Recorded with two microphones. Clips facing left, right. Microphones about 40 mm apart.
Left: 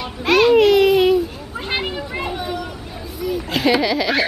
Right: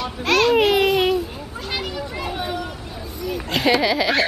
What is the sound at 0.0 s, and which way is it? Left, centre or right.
Baby cry, centre.